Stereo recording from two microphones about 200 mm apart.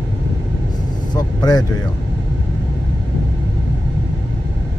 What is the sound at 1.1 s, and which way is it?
Vehicle, 20° left (ahead or behind).